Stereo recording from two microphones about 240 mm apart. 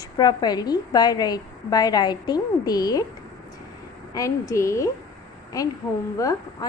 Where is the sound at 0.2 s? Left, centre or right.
Centre.